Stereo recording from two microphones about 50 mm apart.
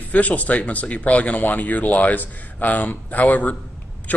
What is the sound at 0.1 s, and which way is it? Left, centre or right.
A man's voice, left.